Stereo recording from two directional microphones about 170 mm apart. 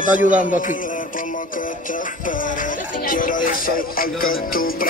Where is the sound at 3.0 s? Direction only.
55° left (ahead or behind).